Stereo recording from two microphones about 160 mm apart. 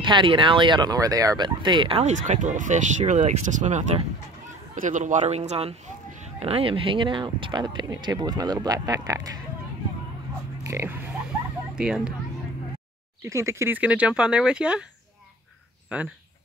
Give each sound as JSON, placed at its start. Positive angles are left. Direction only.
{"t": 0.0, "sound": "a man's voice", "side_deg": -30}
{"t": 10.6, "sound": "speech", "side_deg": -15}
{"t": 11.7, "sound": "speech", "side_deg": -5}
{"t": 13.2, "sound": "speech", "side_deg": -20}
{"t": 15.9, "sound": "speech", "side_deg": -10}